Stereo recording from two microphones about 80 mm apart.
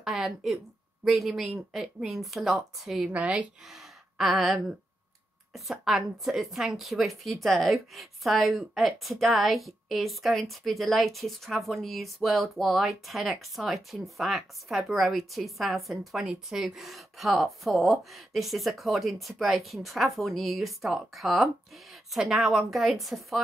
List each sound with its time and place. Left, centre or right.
0.0 s a woman's voice: centre
3.1 s speech: centre
3.7 s a sound: centre
5.5 s a woman's voice: centre